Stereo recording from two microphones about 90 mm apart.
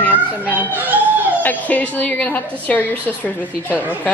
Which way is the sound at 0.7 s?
20° right (ahead or behind).